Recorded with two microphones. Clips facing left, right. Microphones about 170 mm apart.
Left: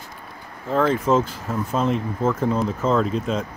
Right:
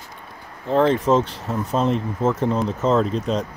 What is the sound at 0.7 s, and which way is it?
Speech, 20° right (ahead or behind).